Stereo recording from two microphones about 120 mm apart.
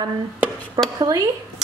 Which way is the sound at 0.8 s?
25° right (ahead or behind).